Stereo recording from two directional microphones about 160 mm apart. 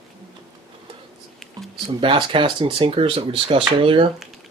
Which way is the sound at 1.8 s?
30° right (ahead or behind).